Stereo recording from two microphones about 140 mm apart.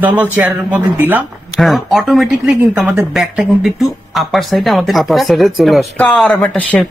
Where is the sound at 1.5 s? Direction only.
Centre (ahead or behind).